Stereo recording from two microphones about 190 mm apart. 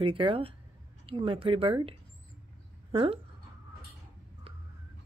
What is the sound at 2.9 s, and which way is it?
Speech, 30° right (ahead or behind).